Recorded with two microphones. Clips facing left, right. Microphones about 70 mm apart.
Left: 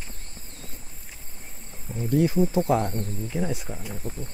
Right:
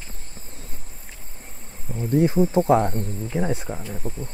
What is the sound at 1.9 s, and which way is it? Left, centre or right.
Speech, right.